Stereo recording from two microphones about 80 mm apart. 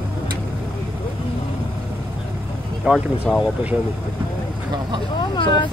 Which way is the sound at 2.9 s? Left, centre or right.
Centre.